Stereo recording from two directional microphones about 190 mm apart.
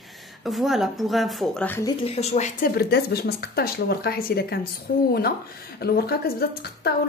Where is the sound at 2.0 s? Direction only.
35° left (ahead or behind).